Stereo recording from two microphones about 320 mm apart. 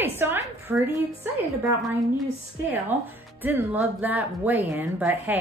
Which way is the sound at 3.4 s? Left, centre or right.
Centre.